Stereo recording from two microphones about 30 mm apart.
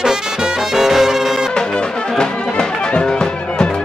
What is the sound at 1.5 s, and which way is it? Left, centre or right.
Music, left.